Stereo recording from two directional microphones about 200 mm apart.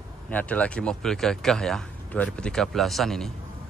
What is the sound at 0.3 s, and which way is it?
Speech, 5° left (ahead or behind).